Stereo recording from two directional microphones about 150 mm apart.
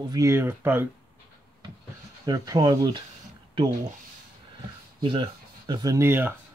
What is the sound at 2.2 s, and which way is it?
Speech, 25° right (ahead or behind).